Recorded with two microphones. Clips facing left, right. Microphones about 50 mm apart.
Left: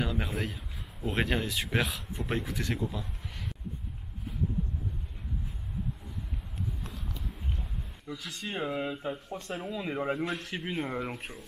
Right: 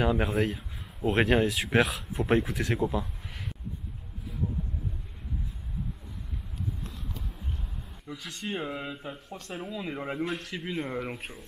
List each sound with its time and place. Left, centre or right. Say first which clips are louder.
0.0 s speech: right 7 dB; centre
0.3 s speech: right 7 dB; centre
8.1 s speech: right 2 dB; centre